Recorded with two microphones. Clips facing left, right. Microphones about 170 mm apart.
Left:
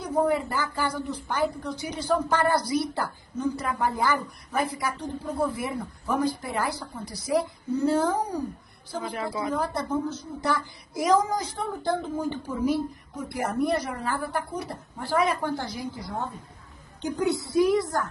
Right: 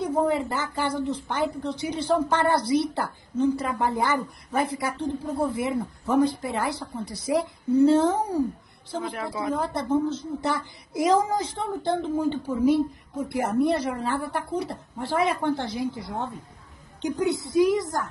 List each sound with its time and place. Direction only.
0.0 s a woman's voice: 25° right (ahead or behind)
9.5 s a woman's voice: 25° right (ahead or behind)